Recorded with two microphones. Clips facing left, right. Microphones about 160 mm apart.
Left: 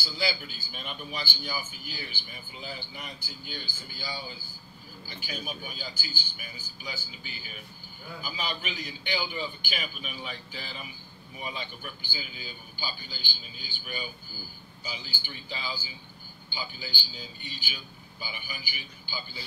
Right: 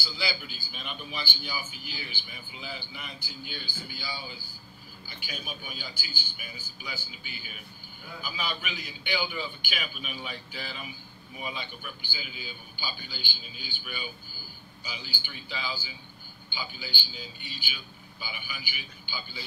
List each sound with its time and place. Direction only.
0.2 s a man's voice: 45° left (ahead or behind)
5.2 s a man's voice: 40° left (ahead or behind)
12.1 s a man's voice: 40° left (ahead or behind)